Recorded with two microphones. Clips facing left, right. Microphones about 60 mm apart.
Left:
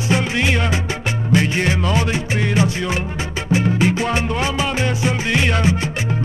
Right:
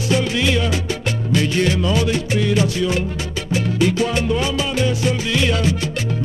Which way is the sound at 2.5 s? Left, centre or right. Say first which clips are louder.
Right 1 dB; left.